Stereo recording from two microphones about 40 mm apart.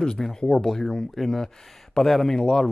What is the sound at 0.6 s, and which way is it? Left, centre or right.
Speech, centre.